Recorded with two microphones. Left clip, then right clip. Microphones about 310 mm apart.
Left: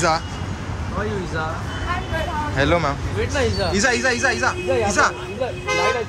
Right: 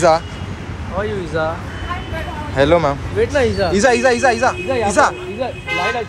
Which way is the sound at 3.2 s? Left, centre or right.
Centre.